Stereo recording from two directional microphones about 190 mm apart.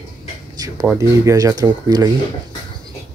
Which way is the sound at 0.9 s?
15° right (ahead or behind).